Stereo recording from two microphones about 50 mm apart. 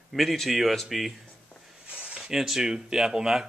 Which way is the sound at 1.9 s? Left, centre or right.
Right.